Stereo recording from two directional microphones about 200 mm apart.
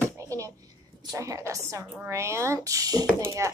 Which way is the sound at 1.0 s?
15° right (ahead or behind).